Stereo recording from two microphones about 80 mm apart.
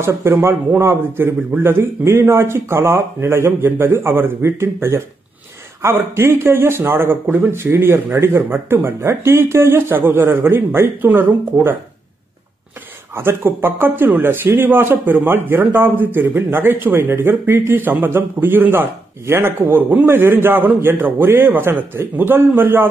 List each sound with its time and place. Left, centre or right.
0.0 s a man's voice: right
13.1 s a man's voice: right